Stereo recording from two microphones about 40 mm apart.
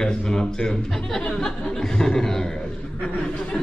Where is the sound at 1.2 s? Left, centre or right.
Left.